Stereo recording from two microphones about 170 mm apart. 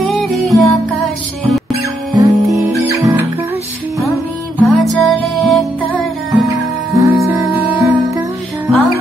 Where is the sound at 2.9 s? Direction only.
20° right (ahead or behind).